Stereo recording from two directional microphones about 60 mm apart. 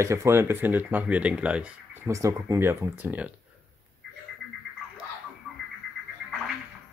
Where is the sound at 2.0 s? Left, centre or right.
Right.